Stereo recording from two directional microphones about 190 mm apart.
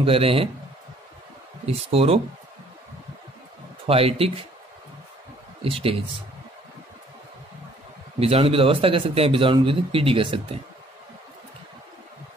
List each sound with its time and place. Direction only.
0.0 s a man's voice: 30° right (ahead or behind)
1.7 s speech: 30° right (ahead or behind)
3.8 s speech: 30° right (ahead or behind)
5.6 s a man's voice: 30° right (ahead or behind)
8.2 s a man's voice: 30° right (ahead or behind)